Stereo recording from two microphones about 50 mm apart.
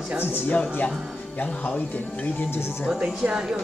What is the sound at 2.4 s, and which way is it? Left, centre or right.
Speech, left.